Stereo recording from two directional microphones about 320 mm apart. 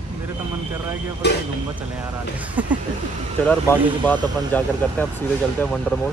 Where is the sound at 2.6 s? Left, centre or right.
Centre.